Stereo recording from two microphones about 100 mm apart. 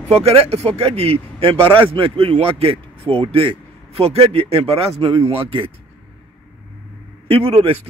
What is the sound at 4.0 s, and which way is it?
Speech, 85° right.